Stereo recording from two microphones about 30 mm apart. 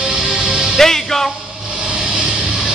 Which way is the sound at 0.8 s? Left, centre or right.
Centre.